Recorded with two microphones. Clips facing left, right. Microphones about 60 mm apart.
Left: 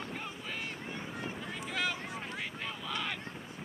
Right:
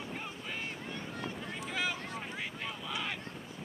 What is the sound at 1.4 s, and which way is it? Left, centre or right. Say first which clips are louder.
Boat: left 1 dB; centre.